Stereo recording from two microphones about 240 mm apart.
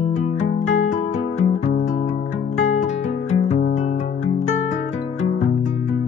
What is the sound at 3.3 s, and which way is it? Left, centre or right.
Music, left.